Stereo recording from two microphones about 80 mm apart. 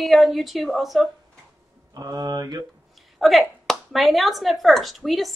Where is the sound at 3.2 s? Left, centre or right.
Centre.